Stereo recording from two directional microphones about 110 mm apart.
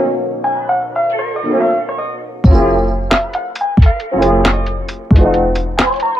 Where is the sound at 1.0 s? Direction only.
Centre (ahead or behind).